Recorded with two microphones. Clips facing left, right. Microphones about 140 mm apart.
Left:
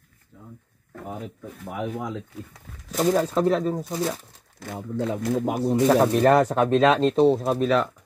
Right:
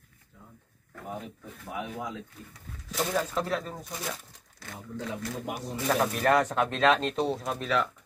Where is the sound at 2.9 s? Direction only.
40° left (ahead or behind).